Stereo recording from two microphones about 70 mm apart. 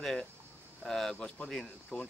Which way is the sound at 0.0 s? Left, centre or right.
Centre.